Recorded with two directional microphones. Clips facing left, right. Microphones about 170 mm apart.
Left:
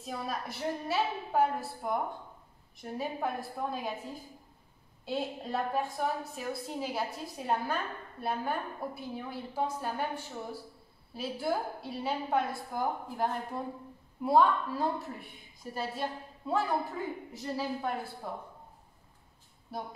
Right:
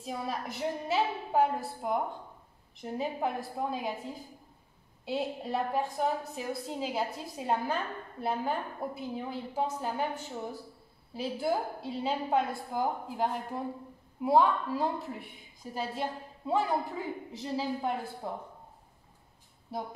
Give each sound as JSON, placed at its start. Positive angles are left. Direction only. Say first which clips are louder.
{"t": 0.0, "sound": "a woman's voice", "louder": "right 1 dB", "side_deg": -15}
{"t": 5.0, "sound": "a woman's voice", "louder": "right 2 dB", "side_deg": -10}